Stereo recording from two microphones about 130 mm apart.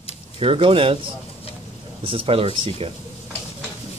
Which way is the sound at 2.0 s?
45° right (ahead or behind).